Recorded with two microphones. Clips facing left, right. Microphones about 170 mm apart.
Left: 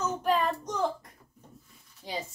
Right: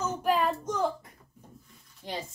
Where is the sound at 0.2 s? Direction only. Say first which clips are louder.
Right 2 dB; 5° right (ahead or behind).